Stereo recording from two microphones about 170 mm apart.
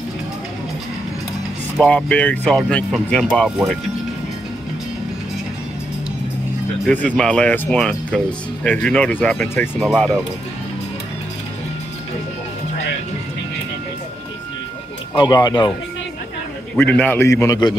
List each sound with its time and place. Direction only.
1.8 s speech: 5° left (ahead or behind)
3.4 s speech: 5° right (ahead or behind)
6.9 s speech: 10° left (ahead or behind)
15.1 s speech: 25° left (ahead or behind)
16.7 s speech: 10° left (ahead or behind)